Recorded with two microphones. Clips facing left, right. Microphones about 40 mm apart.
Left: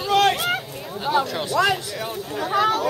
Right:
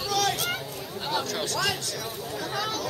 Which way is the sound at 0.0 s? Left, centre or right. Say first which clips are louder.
Left 8 dB; left.